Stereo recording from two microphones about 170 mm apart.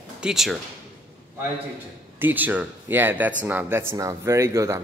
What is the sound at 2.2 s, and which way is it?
Speech, 10° right (ahead or behind).